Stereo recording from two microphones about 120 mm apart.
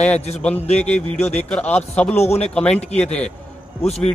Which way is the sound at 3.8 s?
60° left (ahead or behind).